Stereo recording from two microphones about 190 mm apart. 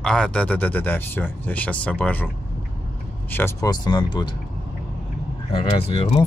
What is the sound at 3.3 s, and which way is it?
Speech, 15° left (ahead or behind).